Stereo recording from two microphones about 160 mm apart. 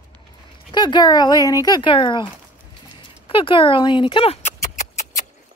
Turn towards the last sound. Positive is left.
turn(degrees=55)  # may be behind; listen again after turning